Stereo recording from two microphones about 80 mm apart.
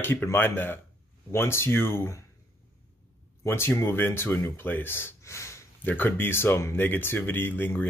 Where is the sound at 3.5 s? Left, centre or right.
Left.